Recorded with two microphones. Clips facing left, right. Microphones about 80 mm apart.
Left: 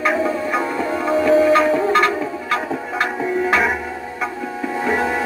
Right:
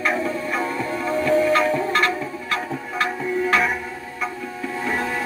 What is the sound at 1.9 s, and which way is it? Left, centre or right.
Music, left.